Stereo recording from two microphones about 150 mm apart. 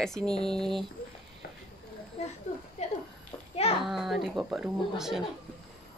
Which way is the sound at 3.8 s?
Centre (ahead or behind).